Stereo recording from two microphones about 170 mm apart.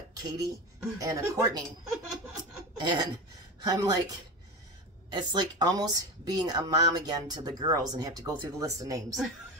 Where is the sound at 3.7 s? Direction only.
20° right (ahead or behind).